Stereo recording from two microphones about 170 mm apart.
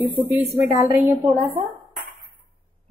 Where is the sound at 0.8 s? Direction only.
10° right (ahead or behind).